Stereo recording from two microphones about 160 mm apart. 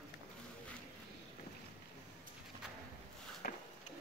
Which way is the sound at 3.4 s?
60° left (ahead or behind).